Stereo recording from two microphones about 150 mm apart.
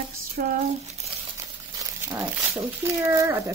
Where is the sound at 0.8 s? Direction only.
45° right (ahead or behind).